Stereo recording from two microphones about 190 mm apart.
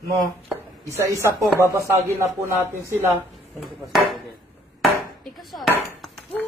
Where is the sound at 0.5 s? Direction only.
15° right (ahead or behind).